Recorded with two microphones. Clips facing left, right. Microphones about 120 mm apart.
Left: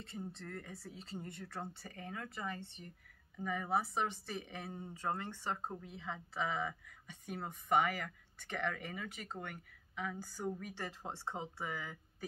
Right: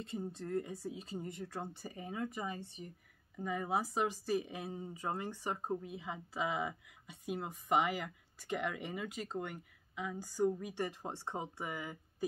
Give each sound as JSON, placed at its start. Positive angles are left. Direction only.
{"t": 0.1, "sound": "speech", "side_deg": -15}